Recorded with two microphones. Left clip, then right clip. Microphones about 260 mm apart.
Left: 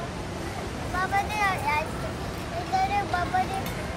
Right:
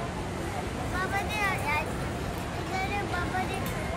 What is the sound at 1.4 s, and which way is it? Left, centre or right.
Vehicle, centre.